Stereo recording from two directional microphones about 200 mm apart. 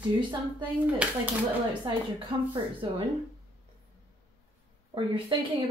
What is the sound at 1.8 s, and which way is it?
Speech, 20° right (ahead or behind).